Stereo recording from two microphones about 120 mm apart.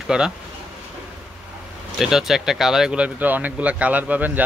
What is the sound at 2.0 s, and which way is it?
Speech, 5° right (ahead or behind).